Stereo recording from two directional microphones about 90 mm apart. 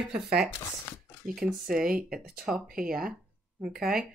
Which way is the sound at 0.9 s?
35° left (ahead or behind).